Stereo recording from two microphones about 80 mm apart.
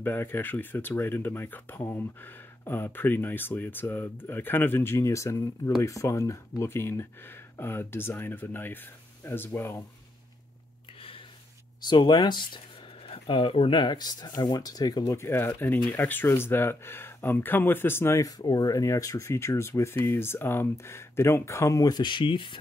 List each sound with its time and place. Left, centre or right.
0.0 s speech: left
11.8 s speech: left
13.3 s speech: left
15.0 s speech: left
18.4 s speech: left